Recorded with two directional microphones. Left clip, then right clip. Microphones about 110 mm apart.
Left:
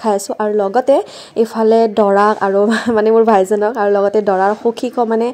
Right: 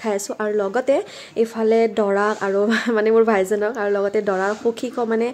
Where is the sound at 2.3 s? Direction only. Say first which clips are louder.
Left 6 dB; 20° left (ahead or behind).